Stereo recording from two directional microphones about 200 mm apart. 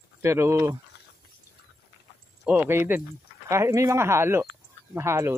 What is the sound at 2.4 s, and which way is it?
Speech, 10° right (ahead or behind).